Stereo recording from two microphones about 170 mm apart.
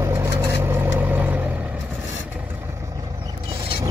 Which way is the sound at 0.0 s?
15° right (ahead or behind).